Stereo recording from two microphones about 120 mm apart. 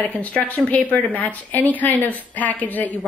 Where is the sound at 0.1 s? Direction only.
10° left (ahead or behind).